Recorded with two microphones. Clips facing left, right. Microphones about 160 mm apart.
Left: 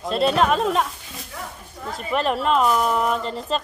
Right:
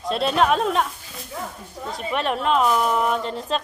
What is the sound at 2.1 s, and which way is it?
A woman's voice, centre (ahead or behind).